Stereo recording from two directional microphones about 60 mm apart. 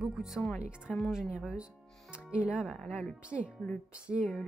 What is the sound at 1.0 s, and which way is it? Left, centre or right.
Speech, centre.